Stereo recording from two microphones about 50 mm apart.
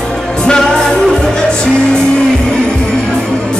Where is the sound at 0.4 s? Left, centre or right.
Centre.